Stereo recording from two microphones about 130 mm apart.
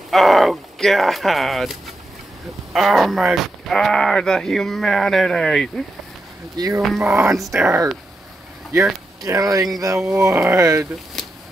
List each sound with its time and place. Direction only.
0.1 s speech: centre (ahead or behind)
6.5 s speech: 30° right (ahead or behind)
6.8 s speech: centre (ahead or behind)
7.1 s speech: 15° right (ahead or behind)
7.3 s speech: centre (ahead or behind)
7.6 s speech: 20° right (ahead or behind)
9.2 s speech: 30° right (ahead or behind)
11.2 s a sound: centre (ahead or behind)